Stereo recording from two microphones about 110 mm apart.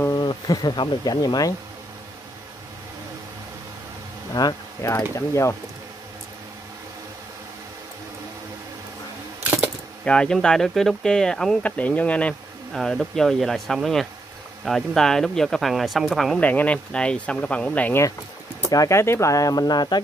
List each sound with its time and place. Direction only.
0.1 s speech: 40° left (ahead or behind)
4.3 s speech: 40° left (ahead or behind)
4.8 s speech: 25° left (ahead or behind)
10.0 s speech: 10° left (ahead or behind)
16.3 s speech: 15° left (ahead or behind)
18.7 s speech: 30° left (ahead or behind)